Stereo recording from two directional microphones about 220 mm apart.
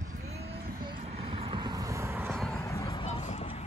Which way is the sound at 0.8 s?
25° right (ahead or behind).